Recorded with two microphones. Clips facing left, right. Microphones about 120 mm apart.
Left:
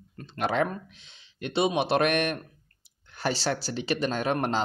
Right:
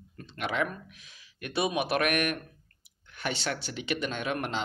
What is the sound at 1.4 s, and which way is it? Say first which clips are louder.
Speech: left 4 dB; 25° left (ahead or behind).